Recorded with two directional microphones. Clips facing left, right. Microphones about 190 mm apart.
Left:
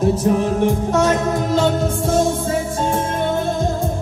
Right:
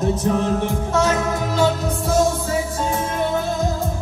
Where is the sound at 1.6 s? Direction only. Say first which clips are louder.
Left 2 dB; 50° left (ahead or behind).